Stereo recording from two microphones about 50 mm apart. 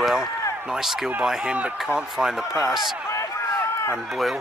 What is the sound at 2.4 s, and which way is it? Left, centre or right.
Speech, left.